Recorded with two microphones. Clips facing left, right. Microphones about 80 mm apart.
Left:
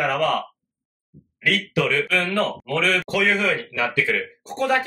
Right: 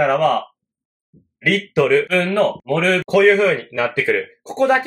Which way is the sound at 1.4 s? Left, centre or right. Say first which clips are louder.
Right 5 dB; right.